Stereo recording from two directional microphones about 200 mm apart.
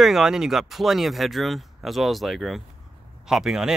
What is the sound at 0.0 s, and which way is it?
Speech, centre (ahead or behind).